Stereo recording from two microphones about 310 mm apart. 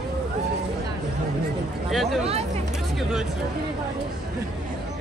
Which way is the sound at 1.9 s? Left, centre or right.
Centre.